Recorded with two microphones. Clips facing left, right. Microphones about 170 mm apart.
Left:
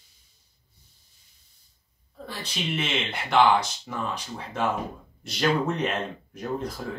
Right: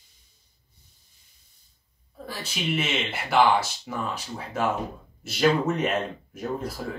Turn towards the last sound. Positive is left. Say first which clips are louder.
# even
turn(degrees=-5)  # may be behind; listen again after turning